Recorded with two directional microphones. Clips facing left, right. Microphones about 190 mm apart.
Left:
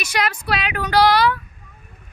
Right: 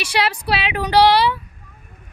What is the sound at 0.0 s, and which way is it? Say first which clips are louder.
Speech: right 2 dB; 30° right (ahead or behind).